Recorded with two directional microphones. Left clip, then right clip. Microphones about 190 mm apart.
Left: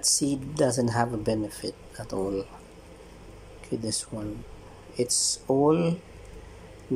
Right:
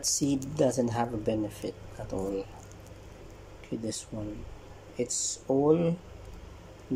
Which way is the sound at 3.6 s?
5° left (ahead or behind).